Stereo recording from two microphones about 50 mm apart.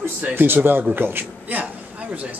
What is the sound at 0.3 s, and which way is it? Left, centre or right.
Speech, right.